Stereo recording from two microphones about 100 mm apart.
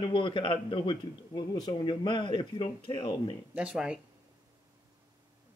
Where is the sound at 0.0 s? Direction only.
55° left (ahead or behind).